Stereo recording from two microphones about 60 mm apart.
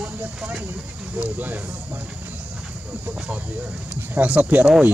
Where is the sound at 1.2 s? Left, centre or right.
Right.